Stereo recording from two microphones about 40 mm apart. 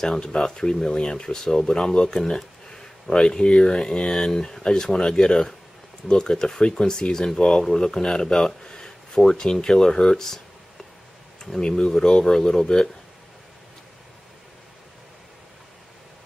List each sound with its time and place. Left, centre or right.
0.4 s speech: centre
11.6 s speech: centre